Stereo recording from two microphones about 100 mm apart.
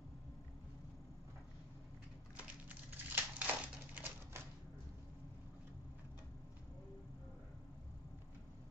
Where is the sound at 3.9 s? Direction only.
20° right (ahead or behind).